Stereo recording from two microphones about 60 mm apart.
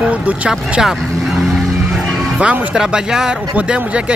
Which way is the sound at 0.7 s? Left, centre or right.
Centre.